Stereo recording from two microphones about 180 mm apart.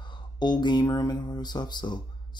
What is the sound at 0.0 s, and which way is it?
Speech, 25° left (ahead or behind).